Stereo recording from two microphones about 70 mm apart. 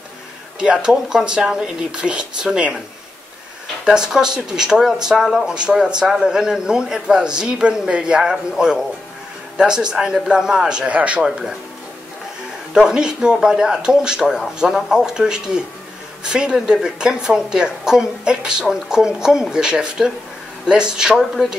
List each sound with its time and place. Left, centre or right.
0.6 s a woman's voice: centre
3.8 s a woman's voice: centre
12.7 s a woman's voice: centre